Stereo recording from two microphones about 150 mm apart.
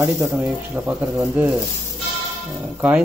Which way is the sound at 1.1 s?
15° right (ahead or behind).